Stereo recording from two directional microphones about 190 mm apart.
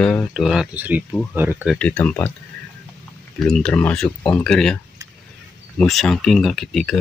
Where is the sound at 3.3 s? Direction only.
5° left (ahead or behind).